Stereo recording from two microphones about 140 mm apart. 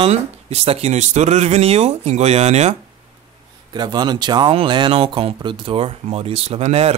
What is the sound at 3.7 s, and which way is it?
Speech, 30° right (ahead or behind).